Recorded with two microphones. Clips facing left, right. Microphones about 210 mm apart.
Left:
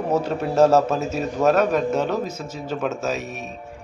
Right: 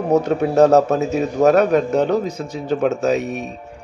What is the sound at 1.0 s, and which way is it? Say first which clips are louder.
A man's voice: right 5 dB; 15° right (ahead or behind).